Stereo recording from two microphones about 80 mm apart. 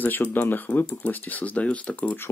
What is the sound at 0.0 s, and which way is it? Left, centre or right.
Speech, left.